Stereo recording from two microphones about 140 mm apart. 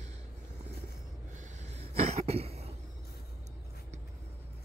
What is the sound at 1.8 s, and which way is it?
Cough, 50° right (ahead or behind).